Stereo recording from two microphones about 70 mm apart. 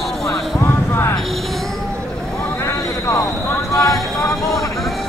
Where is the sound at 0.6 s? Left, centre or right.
Left.